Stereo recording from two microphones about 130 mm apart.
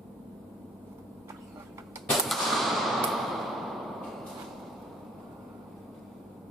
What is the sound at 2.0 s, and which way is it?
Gunshot, centre (ahead or behind).